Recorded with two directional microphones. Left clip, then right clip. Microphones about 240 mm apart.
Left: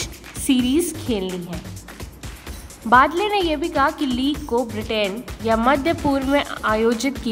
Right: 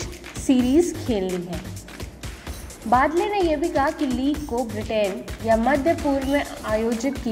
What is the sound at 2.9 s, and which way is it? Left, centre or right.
Speech, left.